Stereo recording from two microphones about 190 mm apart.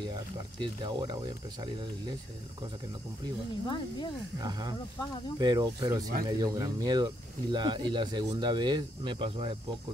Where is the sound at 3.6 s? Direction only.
25° left (ahead or behind).